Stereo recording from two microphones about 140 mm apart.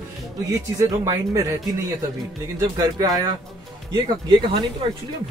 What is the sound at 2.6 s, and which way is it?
Speech, 25° right (ahead or behind).